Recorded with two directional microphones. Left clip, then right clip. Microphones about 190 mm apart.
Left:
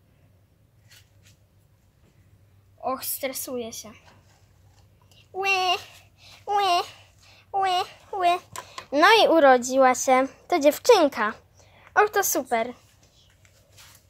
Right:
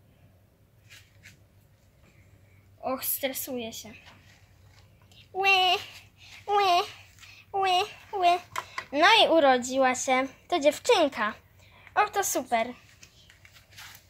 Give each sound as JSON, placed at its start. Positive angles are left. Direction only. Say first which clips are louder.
{"t": 2.8, "sound": "a woman's voice", "louder": "left 2 dB", "side_deg": 30}
{"t": 5.1, "sound": "a sound", "louder": "right 1 dB", "side_deg": 35}
{"t": 8.9, "sound": "a woman's voice", "louder": "left 3 dB", "side_deg": 40}